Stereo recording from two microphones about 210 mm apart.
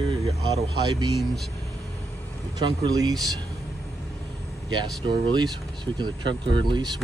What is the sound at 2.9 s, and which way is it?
Speech, 20° right (ahead or behind).